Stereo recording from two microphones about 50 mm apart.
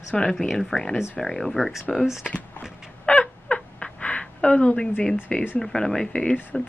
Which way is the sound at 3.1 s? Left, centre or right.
Left.